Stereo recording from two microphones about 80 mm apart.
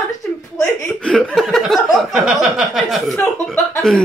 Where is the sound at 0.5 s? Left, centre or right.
Centre.